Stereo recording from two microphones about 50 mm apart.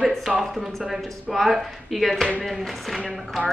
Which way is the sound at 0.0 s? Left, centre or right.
Centre.